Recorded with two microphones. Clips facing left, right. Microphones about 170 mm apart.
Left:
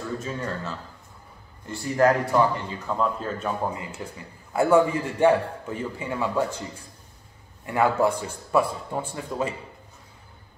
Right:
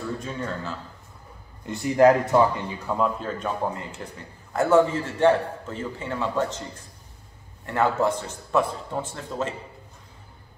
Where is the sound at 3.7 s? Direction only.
10° left (ahead or behind).